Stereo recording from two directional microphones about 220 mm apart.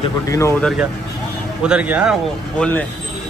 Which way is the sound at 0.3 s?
10° left (ahead or behind).